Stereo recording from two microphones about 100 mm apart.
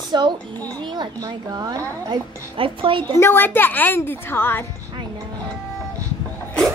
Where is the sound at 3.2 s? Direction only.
25° left (ahead or behind).